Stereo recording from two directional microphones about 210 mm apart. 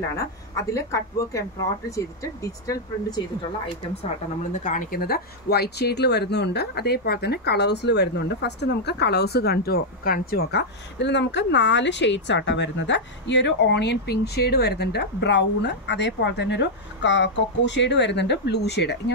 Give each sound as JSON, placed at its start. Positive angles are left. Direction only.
{"t": 0.1, "sound": "speech", "side_deg": 15}
{"t": 4.0, "sound": "speech", "side_deg": 35}